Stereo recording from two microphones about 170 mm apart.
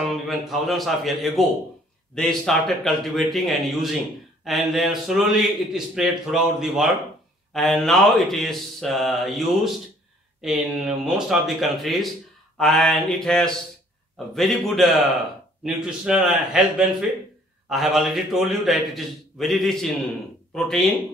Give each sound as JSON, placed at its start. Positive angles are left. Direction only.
{"t": 0.0, "sound": "a man's voice", "side_deg": 0}